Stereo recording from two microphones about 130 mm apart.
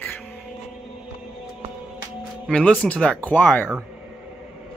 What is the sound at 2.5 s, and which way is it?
Speech, 10° left (ahead or behind).